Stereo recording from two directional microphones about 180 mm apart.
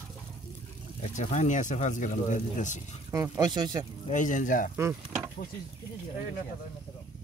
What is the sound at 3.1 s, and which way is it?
Speech, 20° right (ahead or behind).